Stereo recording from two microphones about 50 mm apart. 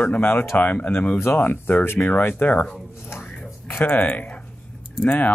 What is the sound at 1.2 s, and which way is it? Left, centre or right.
Speech, left.